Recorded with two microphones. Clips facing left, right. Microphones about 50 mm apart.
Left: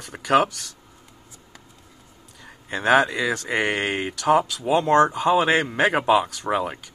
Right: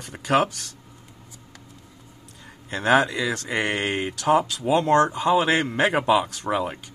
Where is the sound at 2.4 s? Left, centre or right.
Centre.